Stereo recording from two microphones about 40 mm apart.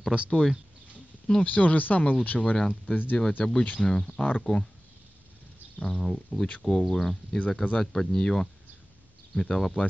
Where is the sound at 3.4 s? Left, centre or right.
Centre.